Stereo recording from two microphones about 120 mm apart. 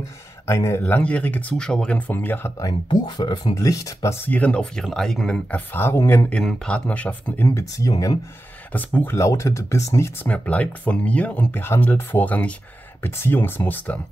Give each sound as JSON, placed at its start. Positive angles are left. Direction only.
{"t": 0.5, "sound": "speech", "side_deg": 25}
{"t": 2.6, "sound": "speech", "side_deg": 35}
{"t": 6.3, "sound": "speech", "side_deg": 10}
{"t": 7.4, "sound": "speech", "side_deg": 30}
{"t": 8.7, "sound": "speech", "side_deg": 15}
{"t": 10.2, "sound": "speech", "side_deg": 10}